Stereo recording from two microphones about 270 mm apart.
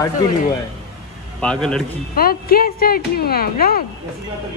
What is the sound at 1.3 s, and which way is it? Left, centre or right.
Speech, centre.